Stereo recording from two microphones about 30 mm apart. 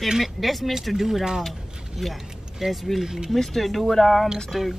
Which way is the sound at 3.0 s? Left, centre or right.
Centre.